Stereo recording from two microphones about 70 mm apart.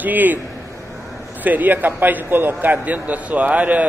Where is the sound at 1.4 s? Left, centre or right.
Right.